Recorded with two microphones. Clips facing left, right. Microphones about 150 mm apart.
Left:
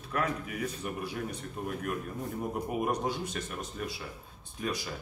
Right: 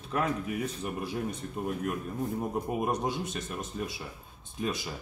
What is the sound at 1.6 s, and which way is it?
Speech, 20° right (ahead or behind).